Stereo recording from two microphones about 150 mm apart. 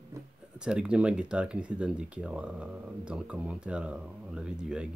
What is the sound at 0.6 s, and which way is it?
Speech, 5° right (ahead or behind).